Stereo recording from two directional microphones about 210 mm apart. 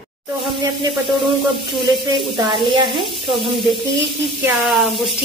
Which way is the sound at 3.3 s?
Centre (ahead or behind).